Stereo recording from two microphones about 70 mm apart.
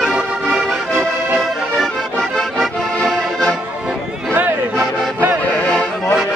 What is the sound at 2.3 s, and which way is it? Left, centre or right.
Accordion, centre.